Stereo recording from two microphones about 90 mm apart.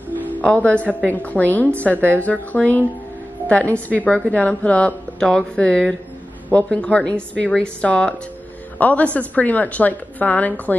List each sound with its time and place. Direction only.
0.3 s a woman's voice: 15° left (ahead or behind)